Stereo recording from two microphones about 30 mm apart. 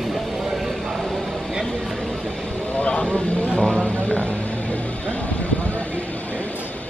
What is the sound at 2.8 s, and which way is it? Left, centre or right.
Vehicle, left.